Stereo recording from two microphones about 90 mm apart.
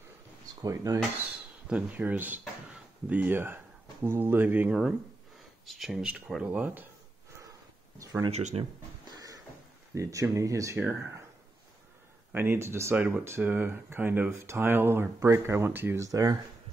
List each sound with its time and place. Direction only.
0.6 s speech: 45° right (ahead or behind)
1.7 s speech: 15° right (ahead or behind)
4.6 s speech: 5° right (ahead or behind)
8.5 s speech: 90° right
9.1 s a sound: 40° right (ahead or behind)
9.9 s speech: 35° right (ahead or behind)
12.3 s speech: 25° right (ahead or behind)
12.9 s speech: 20° right (ahead or behind)
16.0 s speech: 40° right (ahead or behind)